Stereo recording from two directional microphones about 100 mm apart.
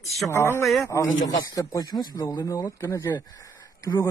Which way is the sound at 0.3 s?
25° left (ahead or behind).